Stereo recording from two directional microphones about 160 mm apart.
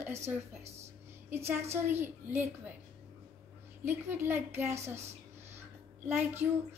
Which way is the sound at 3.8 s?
15° right (ahead or behind).